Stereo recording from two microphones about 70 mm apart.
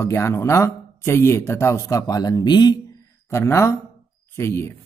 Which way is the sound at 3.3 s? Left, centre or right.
Left.